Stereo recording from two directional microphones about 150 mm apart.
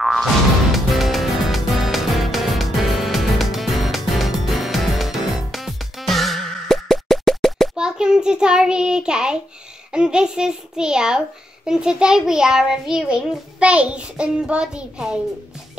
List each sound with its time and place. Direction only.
0.0 s music: centre (ahead or behind)
9.9 s a child's voice: 5° right (ahead or behind)